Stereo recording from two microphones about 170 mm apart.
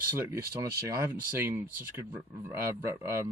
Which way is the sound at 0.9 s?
15° right (ahead or behind).